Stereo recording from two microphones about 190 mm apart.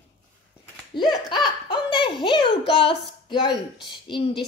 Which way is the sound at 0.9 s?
25° left (ahead or behind).